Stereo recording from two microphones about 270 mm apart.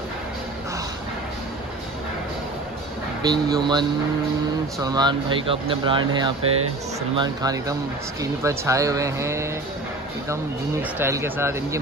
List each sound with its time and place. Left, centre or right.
3.2 s speech: centre